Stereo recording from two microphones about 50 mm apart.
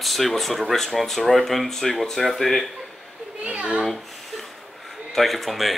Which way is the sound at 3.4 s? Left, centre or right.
Right.